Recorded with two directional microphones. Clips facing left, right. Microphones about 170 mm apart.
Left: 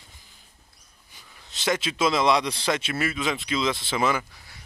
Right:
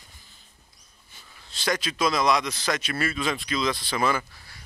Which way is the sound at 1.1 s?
15° left (ahead or behind).